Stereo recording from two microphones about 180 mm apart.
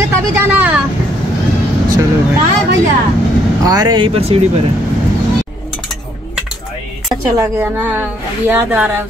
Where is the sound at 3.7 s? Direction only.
25° right (ahead or behind).